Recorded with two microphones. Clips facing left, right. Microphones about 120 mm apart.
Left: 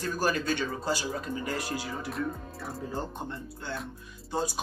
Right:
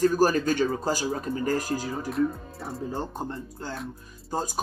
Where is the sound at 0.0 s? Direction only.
40° right (ahead or behind).